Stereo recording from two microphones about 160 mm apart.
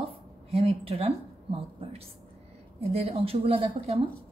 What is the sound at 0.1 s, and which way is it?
A woman's voice, 40° right (ahead or behind).